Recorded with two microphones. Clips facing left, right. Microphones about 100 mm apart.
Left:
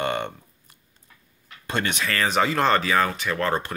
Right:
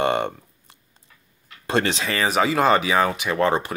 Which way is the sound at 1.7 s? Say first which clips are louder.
Right 4 dB; 30° right (ahead or behind).